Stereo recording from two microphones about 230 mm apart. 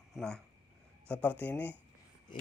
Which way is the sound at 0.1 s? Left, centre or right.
Centre.